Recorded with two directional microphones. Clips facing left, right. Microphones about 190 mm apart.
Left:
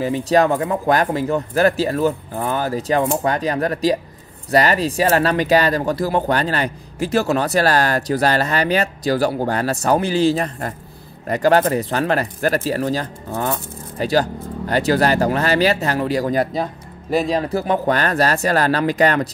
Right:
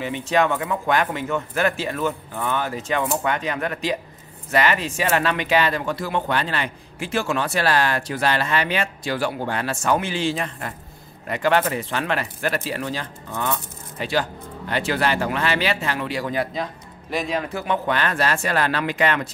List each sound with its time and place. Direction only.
0.0 s speech: 35° left (ahead or behind)